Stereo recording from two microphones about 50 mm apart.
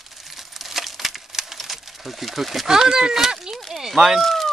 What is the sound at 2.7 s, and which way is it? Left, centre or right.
Speech, centre.